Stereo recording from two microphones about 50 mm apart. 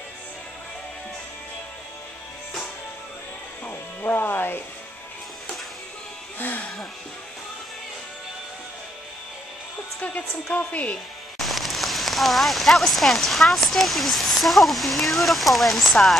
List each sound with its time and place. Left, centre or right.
3.6 s speech: left
6.4 s music: left
9.9 s a woman's voice: left
11.3 s speech: centre